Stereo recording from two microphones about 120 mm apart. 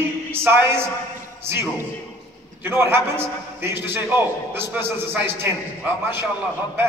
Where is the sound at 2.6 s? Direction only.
20° right (ahead or behind).